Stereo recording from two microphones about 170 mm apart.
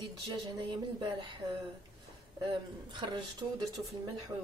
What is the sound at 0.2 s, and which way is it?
Speech, 25° right (ahead or behind).